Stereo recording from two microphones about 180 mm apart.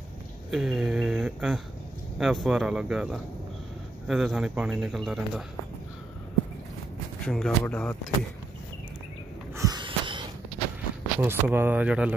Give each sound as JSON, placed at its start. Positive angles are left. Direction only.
{"t": 0.5, "sound": "speech", "side_deg": 0}
{"t": 7.2, "sound": "speech", "side_deg": 5}
{"t": 9.6, "sound": "a sound", "side_deg": -25}
{"t": 11.1, "sound": "speech", "side_deg": -10}